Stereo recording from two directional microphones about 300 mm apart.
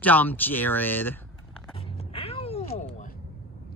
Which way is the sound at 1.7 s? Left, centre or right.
Centre.